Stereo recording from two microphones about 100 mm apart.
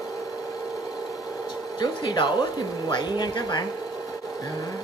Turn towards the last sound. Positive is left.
turn(degrees=45)  # may be behind; listen again after turning